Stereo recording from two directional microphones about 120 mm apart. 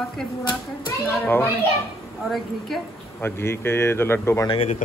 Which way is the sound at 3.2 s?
20° left (ahead or behind).